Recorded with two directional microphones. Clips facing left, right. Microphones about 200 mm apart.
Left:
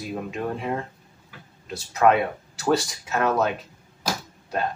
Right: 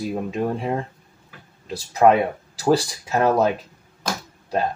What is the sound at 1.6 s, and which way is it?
Speech, 35° right (ahead or behind).